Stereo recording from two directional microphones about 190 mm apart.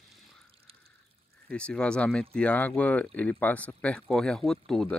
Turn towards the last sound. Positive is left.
turn(degrees=5)  # may be behind; listen again after turning